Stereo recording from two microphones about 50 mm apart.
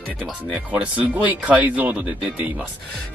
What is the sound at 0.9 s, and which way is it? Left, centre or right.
Speech, right.